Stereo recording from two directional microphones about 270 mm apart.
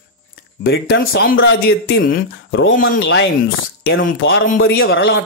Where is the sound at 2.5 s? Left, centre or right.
Left.